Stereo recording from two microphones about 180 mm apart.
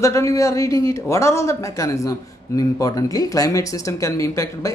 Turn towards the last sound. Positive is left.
turn(degrees=20)  # may be behind; listen again after turning